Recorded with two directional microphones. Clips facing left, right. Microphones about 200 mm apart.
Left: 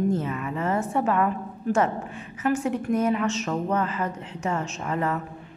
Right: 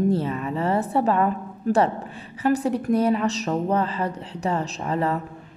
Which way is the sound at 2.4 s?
35° right (ahead or behind).